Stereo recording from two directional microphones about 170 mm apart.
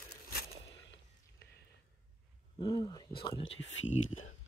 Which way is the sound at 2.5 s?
25° left (ahead or behind).